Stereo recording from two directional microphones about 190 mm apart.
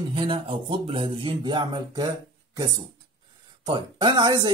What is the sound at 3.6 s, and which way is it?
Speech, 25° right (ahead or behind).